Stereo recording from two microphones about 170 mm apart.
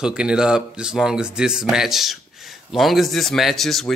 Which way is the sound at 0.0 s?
5° right (ahead or behind).